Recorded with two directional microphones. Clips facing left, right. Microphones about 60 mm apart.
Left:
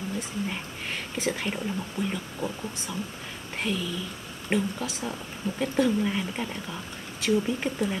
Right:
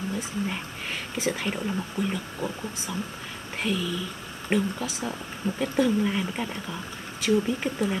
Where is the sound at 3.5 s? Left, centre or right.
Centre.